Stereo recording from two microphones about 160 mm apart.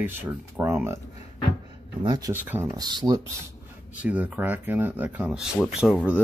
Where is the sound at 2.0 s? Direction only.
25° right (ahead or behind).